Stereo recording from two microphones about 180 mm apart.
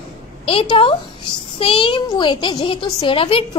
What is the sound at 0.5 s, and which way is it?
A child's voice, 30° left (ahead or behind).